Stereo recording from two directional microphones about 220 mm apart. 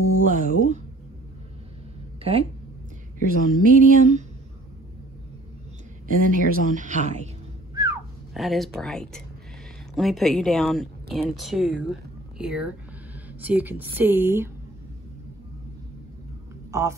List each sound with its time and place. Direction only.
0.3 s speech: 35° right (ahead or behind)
3.3 s speech: 40° right (ahead or behind)
6.0 s speech: 40° right (ahead or behind)
7.7 s a sound: 15° right (ahead or behind)
8.4 s a woman's voice: centre (ahead or behind)
16.7 s a woman's voice: 15° right (ahead or behind)